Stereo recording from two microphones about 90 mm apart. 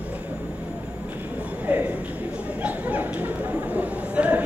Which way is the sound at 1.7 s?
15° right (ahead or behind).